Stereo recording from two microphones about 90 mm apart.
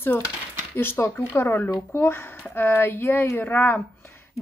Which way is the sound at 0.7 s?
25° left (ahead or behind).